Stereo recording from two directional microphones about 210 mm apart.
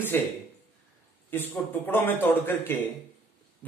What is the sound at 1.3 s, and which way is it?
A man's voice, 10° left (ahead or behind).